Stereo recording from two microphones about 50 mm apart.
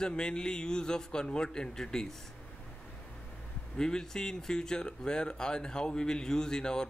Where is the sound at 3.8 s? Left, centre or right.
Centre.